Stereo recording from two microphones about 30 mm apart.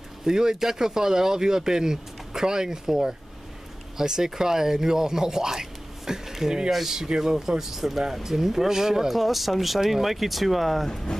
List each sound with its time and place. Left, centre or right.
0.2 s speech: centre
9.1 s speech: centre